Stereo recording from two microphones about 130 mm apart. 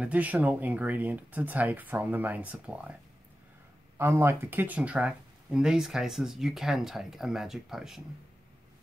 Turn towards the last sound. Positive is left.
turn(degrees=-5)  # may be behind; listen again after turning